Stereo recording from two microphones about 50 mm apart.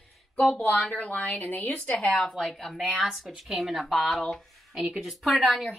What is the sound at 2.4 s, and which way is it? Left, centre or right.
Speech, centre.